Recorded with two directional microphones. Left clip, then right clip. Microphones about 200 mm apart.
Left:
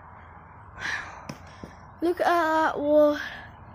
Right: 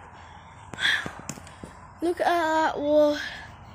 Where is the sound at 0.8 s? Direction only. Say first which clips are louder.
Right 7 dB; 10° right (ahead or behind).